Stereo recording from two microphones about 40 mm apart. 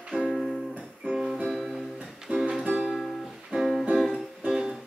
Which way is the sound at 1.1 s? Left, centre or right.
Centre.